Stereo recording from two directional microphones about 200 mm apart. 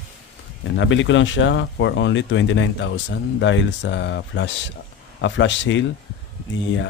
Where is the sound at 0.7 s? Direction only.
70° left (ahead or behind).